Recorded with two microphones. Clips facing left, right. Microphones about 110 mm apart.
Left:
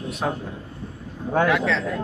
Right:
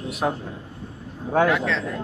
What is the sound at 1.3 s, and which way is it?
Speech, centre (ahead or behind).